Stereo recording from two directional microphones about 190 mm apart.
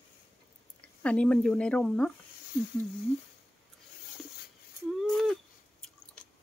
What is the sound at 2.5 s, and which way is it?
Speech, 55° left (ahead or behind).